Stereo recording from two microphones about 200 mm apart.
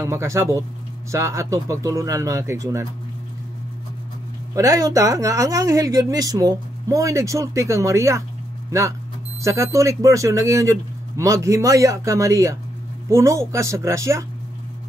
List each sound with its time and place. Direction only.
0.0 s speech: 15° right (ahead or behind)
4.6 s speech: 15° right (ahead or behind)